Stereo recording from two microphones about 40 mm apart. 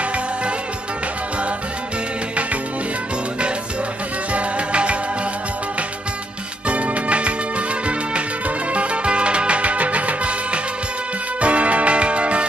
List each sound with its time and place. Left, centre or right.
4.3 s music: right
6.7 s music: right
8.7 s music: right